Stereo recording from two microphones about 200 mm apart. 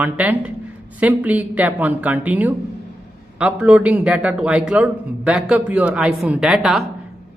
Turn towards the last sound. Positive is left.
turn(degrees=0)  # may be behind; listen again after turning